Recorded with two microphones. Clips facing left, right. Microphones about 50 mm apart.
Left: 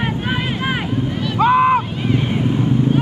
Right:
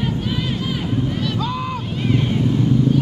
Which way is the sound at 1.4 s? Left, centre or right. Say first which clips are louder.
Left 12 dB; left.